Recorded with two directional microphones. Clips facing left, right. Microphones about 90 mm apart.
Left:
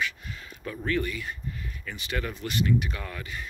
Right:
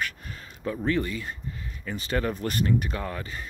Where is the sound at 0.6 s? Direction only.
25° right (ahead or behind).